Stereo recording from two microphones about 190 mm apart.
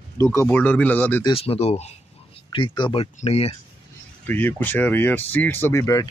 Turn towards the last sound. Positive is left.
turn(degrees=15)  # may be behind; listen again after turning